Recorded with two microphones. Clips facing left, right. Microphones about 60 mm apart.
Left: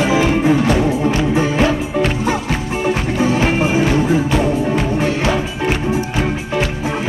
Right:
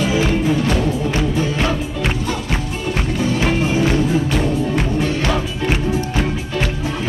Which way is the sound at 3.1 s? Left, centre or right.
Left.